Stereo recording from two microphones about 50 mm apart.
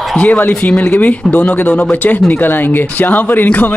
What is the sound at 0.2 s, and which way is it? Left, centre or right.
A man's voice, left.